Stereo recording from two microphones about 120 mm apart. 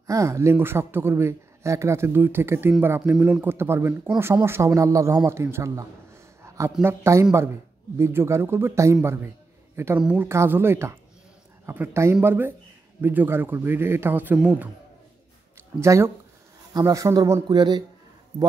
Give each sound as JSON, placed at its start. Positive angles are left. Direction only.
{"t": 0.0, "sound": "speech", "side_deg": -25}
{"t": 6.4, "sound": "a sound", "side_deg": -25}
{"t": 6.8, "sound": "speech", "side_deg": -20}
{"t": 9.9, "sound": "a man's voice", "side_deg": -10}
{"t": 10.2, "sound": "a man's voice", "side_deg": -20}
{"t": 15.8, "sound": "speech", "side_deg": -25}